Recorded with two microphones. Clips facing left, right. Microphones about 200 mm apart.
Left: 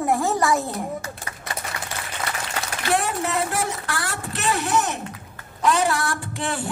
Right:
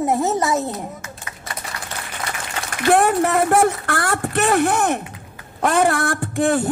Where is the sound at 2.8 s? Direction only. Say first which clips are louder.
Right 9 dB; 55° right (ahead or behind).